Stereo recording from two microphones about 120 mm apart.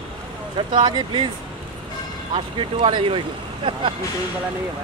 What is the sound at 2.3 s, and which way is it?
Speech, 45° right (ahead or behind).